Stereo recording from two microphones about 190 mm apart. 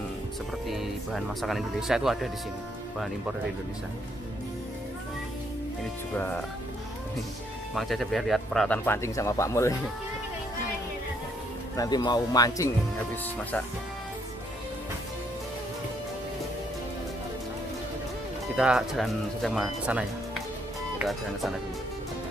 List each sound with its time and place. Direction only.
0.7 s speech: centre (ahead or behind)
6.1 s speech: 10° left (ahead or behind)
7.7 s speech: centre (ahead or behind)
11.7 s speech: 20° left (ahead or behind)
18.6 s speech: 5° right (ahead or behind)